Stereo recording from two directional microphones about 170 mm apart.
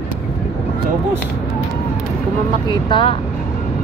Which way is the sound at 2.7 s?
30° left (ahead or behind).